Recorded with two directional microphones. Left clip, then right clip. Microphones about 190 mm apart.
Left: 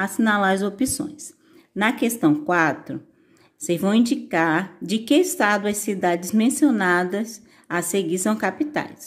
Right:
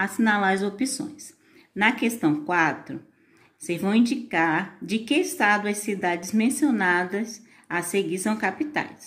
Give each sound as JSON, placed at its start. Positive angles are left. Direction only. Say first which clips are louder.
{"t": 0.0, "sound": "speech", "louder": "left 2 dB", "side_deg": 40}